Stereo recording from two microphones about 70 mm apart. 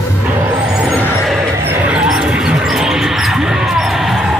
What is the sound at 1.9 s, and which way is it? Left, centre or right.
Mouse, centre.